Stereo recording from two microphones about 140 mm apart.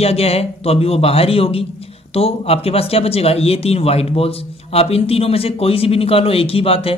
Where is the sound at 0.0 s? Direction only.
45° left (ahead or behind).